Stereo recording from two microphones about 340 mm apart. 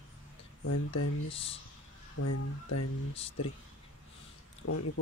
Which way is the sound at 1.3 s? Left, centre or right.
Centre.